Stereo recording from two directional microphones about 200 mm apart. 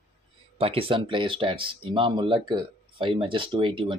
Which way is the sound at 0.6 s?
30° right (ahead or behind).